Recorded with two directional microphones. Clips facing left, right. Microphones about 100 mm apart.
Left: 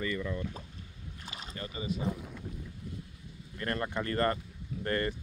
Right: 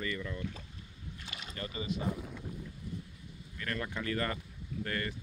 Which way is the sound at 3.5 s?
35° left (ahead or behind).